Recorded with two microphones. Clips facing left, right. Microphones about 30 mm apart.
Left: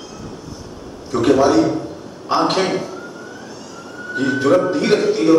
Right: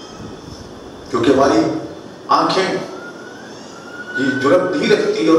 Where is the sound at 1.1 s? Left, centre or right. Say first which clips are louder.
Right 1 dB; right.